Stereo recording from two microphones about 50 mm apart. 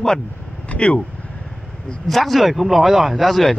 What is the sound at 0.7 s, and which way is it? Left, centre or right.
Speech, left.